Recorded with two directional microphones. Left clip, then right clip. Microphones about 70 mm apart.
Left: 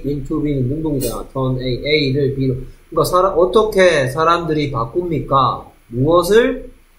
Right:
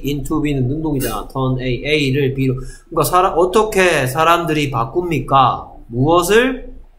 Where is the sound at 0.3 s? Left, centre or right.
Centre.